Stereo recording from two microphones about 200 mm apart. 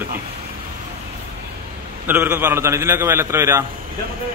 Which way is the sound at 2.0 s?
10° right (ahead or behind).